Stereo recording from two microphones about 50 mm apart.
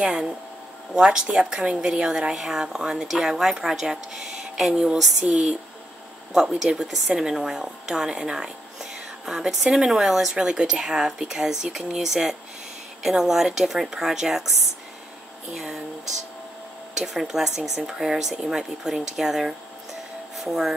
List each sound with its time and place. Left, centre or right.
0.0 s speech: centre
6.3 s speech: centre
15.5 s speech: centre
16.9 s speech: centre